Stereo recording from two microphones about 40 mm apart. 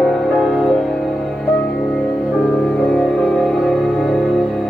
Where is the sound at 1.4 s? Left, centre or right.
Left.